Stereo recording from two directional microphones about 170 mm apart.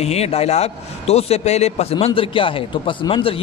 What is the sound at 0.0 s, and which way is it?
A man's voice, 40° left (ahead or behind).